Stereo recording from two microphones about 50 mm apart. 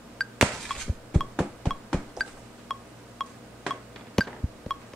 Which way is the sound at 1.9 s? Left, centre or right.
Centre.